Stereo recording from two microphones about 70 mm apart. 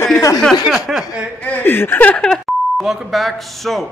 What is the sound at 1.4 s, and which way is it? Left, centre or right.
Speech, left.